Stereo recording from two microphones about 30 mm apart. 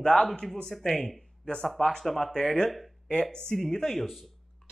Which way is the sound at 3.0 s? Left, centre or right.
Left.